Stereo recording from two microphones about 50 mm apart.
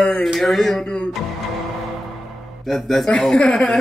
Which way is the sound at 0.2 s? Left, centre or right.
Centre.